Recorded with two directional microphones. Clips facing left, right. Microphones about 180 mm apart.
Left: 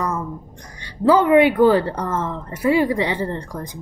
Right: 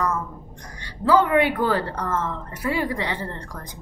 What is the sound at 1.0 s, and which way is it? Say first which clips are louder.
A woman's voice: left 5 dB; 20° left (ahead or behind).